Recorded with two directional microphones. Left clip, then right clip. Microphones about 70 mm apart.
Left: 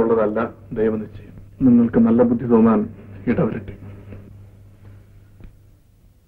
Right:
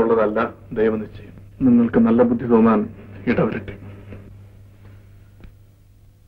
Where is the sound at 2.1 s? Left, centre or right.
Right.